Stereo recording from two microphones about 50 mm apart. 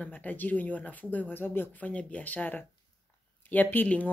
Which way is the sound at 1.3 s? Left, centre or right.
Left.